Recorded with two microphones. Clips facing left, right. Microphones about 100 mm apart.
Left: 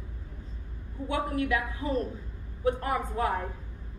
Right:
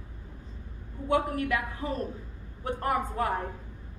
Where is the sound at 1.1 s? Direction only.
50° right (ahead or behind).